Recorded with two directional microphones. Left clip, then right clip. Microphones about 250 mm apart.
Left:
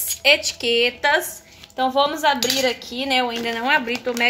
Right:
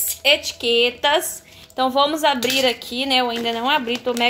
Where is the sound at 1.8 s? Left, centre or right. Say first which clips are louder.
Right 1 dB; centre.